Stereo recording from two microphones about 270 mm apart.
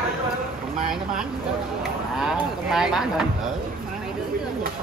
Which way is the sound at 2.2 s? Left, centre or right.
Centre.